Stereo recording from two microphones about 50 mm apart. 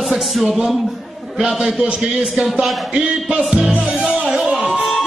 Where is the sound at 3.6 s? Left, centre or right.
Right.